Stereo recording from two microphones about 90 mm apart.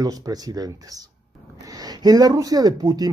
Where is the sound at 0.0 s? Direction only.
45° right (ahead or behind).